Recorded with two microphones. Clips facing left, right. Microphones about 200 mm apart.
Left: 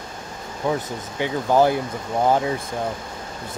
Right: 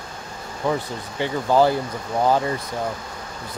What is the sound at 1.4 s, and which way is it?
Speech, 15° left (ahead or behind).